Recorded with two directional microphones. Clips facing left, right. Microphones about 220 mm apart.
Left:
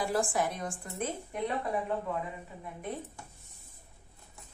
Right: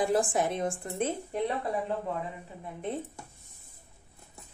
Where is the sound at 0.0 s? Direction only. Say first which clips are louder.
Right 4 dB; 20° right (ahead or behind).